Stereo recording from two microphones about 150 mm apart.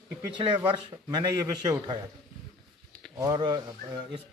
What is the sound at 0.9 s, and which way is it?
Speech, 25° right (ahead or behind).